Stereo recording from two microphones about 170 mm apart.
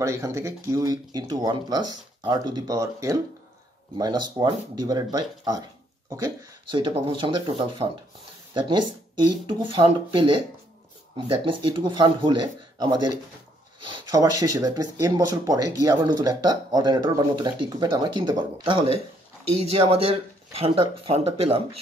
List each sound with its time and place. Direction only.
0.0 s speech: 20° right (ahead or behind)
9.5 s speech: 30° right (ahead or behind)